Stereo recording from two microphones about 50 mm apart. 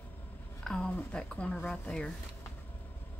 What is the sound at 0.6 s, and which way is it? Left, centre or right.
Speech, centre.